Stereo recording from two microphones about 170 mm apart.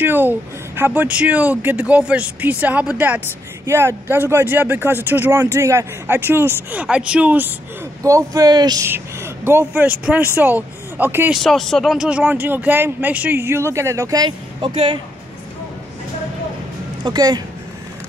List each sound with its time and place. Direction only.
0.0 s speech: 10° right (ahead or behind)
8.0 s speech: 20° right (ahead or behind)
8.8 s speech: 15° right (ahead or behind)
11.3 s speech: centre (ahead or behind); by 15.0 s 30° right (ahead or behind)
17.0 s speech: 25° right (ahead or behind)